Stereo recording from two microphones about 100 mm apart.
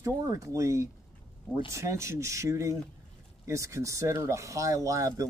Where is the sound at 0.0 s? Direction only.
35° right (ahead or behind).